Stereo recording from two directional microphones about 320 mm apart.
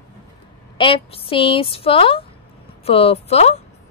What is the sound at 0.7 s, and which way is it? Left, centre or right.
Speech, centre.